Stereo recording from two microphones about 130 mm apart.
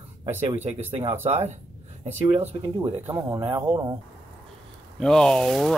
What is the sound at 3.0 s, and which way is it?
Speech, 20° right (ahead or behind).